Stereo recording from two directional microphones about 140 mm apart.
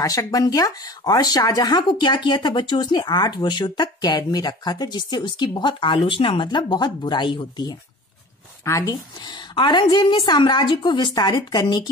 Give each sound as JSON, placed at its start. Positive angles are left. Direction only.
{"t": 0.0, "sound": "speech", "side_deg": 25}